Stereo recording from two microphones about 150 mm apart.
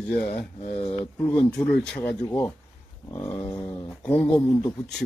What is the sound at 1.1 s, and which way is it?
Speech, 15° left (ahead or behind).